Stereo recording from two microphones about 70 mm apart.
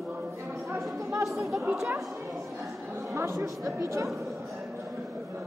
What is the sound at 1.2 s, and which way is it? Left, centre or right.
Chatter, centre.